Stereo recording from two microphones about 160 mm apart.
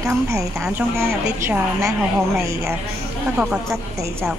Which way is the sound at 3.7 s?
20° right (ahead or behind).